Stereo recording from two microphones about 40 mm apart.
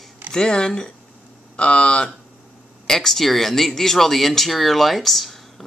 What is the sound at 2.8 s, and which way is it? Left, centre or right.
Speech, centre.